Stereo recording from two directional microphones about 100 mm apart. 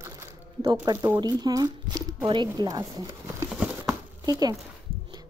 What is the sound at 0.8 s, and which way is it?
Speech, 40° right (ahead or behind).